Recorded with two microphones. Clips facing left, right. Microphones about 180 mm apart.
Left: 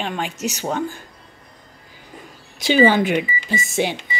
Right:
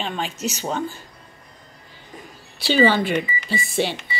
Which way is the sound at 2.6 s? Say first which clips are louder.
Left 3 dB; 15° left (ahead or behind).